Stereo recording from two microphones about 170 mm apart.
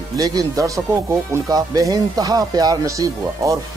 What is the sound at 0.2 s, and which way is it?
Speech, 20° right (ahead or behind).